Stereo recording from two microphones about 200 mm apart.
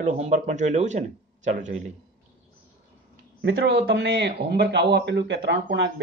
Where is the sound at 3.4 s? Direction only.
60° right (ahead or behind).